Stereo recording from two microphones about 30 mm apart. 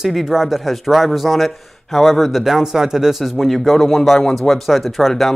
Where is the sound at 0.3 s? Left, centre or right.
Centre.